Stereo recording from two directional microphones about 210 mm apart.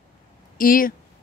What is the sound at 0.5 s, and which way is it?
Speech, 40° left (ahead or behind).